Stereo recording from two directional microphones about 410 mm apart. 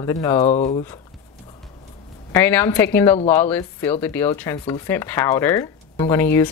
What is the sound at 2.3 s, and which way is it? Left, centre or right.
A woman's voice, centre.